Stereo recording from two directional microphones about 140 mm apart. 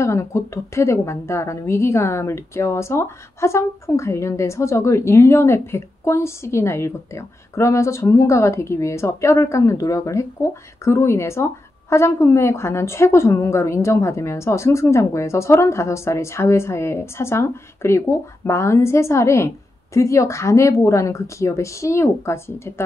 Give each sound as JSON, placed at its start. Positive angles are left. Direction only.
{"t": 0.0, "sound": "a woman's voice", "side_deg": 20}